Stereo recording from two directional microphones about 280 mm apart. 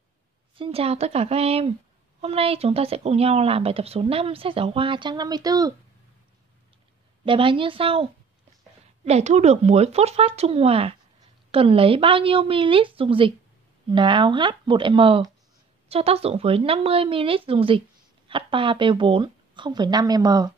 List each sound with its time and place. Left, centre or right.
0.6 s speech: right
7.2 s a woman's voice: centre